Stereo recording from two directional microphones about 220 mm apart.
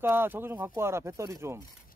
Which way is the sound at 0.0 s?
10° right (ahead or behind).